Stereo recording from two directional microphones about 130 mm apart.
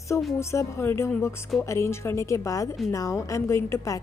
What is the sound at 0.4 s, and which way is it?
A woman's voice, 20° left (ahead or behind).